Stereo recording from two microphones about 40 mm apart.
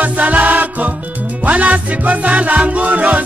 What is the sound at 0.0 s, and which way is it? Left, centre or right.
Music, right.